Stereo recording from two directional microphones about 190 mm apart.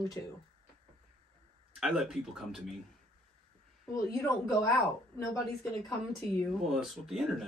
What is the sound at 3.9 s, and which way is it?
Speech, 20° left (ahead or behind).